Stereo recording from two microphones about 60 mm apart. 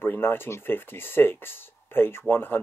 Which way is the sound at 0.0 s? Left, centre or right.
Left.